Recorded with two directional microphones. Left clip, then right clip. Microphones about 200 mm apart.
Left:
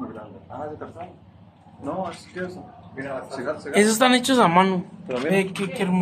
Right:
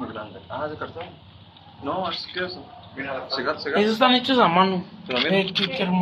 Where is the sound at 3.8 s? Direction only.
55° left (ahead or behind).